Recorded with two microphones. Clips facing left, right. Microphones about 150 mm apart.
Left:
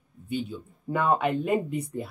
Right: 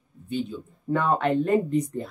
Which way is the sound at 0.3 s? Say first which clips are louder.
Right 2 dB; 10° left (ahead or behind).